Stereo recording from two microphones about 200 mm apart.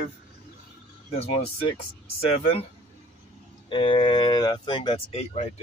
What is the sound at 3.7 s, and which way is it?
Speech, 25° left (ahead or behind).